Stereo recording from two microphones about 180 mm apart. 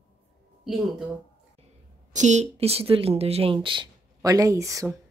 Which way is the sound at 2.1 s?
40° right (ahead or behind).